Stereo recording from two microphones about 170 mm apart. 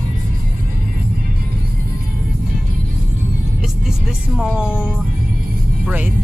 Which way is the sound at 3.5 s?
5° right (ahead or behind).